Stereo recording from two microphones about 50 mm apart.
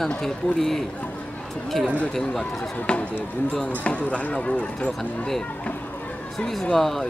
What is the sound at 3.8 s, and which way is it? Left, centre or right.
Speech, left.